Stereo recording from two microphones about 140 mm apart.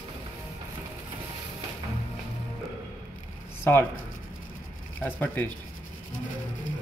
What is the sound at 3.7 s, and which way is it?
Speech, 15° left (ahead or behind).